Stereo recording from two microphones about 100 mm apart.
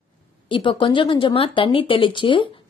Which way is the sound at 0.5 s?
55° left (ahead or behind).